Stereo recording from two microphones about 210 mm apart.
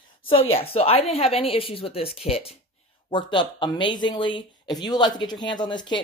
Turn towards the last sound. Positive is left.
turn(degrees=20)  # may be behind; listen again after turning